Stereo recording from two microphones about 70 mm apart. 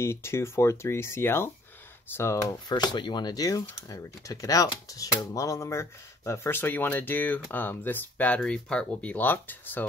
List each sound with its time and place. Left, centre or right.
0.0 s speech: left
2.7 s speech: left
3.9 s speech: left